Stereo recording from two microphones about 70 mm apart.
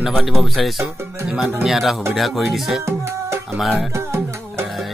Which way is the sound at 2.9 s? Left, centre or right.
Right.